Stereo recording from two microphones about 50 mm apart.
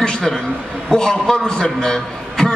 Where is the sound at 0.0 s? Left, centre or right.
Centre.